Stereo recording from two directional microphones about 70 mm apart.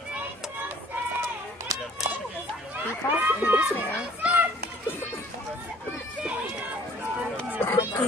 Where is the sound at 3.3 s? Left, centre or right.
Right.